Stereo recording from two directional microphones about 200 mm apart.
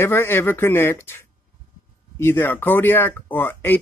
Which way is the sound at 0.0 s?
10° left (ahead or behind).